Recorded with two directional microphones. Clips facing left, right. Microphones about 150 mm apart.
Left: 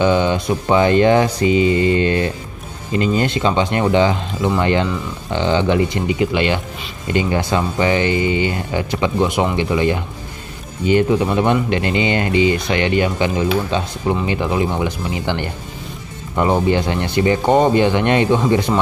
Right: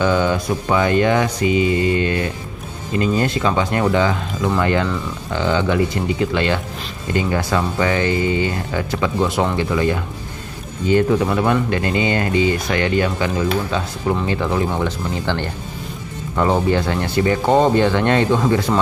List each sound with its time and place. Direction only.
0.0 s speech: 20° left (ahead or behind)